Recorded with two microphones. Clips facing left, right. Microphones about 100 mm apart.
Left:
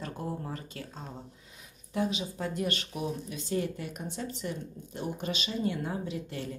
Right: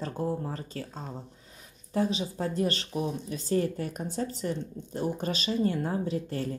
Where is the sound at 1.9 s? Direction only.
35° right (ahead or behind).